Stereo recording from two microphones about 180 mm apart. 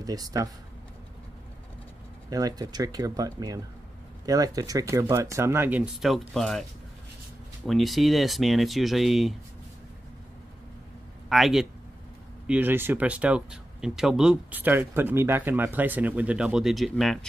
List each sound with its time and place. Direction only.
0.0 s speech: 20° right (ahead or behind)
2.2 s speech: 20° right (ahead or behind); by 6.6 s centre (ahead or behind)
7.6 s speech: centre (ahead or behind)
11.2 s a man's voice: centre (ahead or behind)